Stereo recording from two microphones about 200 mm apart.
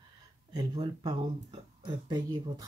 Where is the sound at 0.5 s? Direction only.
25° right (ahead or behind).